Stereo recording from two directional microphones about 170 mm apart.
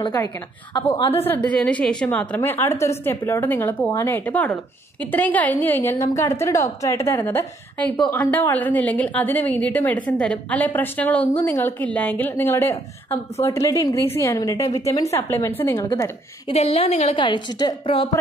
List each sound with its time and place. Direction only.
0.0 s a woman's voice: 20° left (ahead or behind)
1.2 s a woman's voice: 10° left (ahead or behind)
15.8 s a woman's voice: 25° left (ahead or behind)